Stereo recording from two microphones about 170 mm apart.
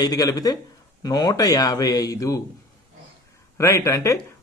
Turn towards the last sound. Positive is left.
turn(degrees=20)  # may be behind; listen again after turning